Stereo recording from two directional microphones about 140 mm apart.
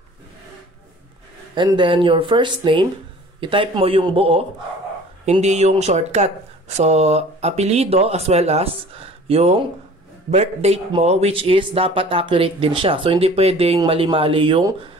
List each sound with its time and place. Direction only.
1.5 s speech: 35° right (ahead or behind)
5.2 s speech: 55° right (ahead or behind)